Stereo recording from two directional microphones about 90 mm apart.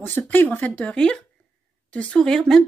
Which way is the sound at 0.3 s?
20° left (ahead or behind).